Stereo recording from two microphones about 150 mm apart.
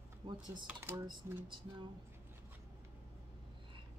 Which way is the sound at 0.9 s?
30° right (ahead or behind).